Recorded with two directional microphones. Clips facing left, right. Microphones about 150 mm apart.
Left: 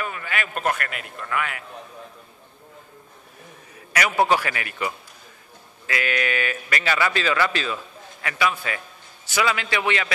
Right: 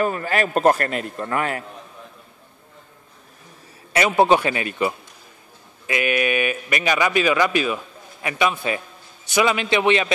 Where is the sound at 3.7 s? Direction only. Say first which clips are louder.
Right 5 dB; 25° right (ahead or behind).